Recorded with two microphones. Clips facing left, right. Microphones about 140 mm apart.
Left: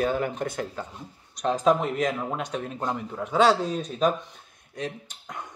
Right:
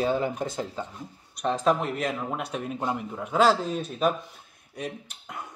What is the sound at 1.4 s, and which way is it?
Speech, centre (ahead or behind).